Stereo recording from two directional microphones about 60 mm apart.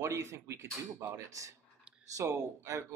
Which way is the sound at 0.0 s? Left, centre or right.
Right.